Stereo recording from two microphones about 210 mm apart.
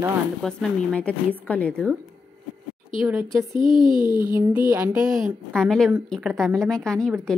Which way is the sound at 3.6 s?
20° left (ahead or behind).